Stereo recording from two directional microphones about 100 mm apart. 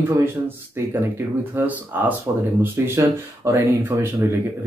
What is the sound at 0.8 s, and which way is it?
Speech, 25° right (ahead or behind).